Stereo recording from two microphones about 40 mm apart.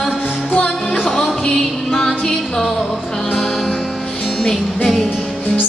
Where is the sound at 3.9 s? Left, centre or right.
Centre.